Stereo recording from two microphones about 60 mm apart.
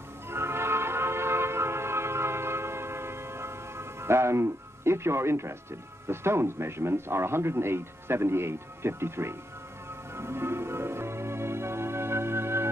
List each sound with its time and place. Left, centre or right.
0.3 s music: right